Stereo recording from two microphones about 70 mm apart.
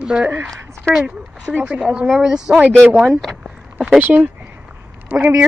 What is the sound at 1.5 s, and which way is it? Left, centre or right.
Speech, right.